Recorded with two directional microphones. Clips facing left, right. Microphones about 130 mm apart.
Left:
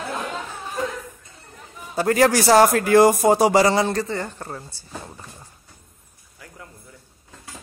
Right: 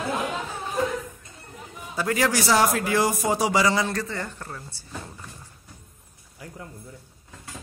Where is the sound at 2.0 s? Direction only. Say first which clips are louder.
Left 6 dB; 45° left (ahead or behind).